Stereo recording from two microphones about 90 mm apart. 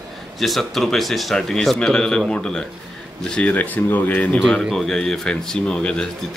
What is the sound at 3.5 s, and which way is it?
Speech, 20° left (ahead or behind).